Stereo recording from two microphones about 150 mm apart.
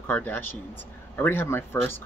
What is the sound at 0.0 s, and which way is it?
Speech, 15° left (ahead or behind).